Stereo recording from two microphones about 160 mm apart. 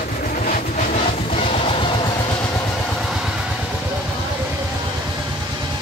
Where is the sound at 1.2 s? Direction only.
35° left (ahead or behind).